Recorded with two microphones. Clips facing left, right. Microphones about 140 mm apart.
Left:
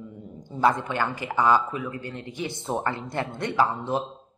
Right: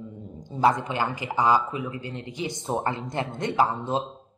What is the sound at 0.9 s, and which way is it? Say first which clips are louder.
A woman's voice: even; 15° right (ahead or behind).